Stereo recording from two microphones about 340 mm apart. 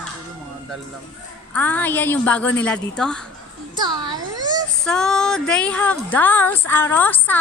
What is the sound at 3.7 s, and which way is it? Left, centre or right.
Speech, centre.